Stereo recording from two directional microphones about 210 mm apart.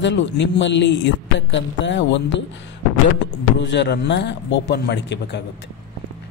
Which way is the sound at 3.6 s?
55° left (ahead or behind).